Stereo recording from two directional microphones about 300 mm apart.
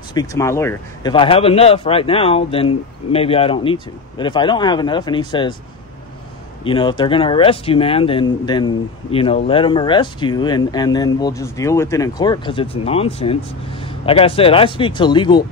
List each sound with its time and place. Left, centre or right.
0.1 s speech: centre
6.6 s speech: centre